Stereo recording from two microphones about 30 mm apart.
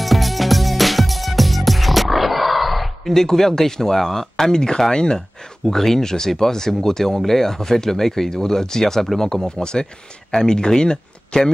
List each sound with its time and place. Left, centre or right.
0.0 s music: centre
3.1 s speech: centre
5.7 s speech: centre